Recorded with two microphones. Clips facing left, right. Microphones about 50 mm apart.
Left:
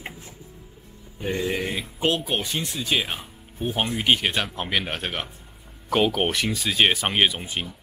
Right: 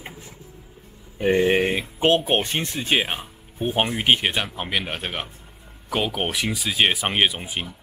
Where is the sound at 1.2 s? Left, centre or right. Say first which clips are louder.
Right 8 dB; right.